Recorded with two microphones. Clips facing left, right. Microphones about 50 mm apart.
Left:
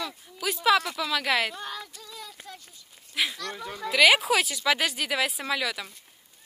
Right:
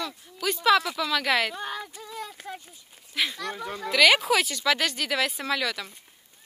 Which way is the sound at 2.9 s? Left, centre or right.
Centre.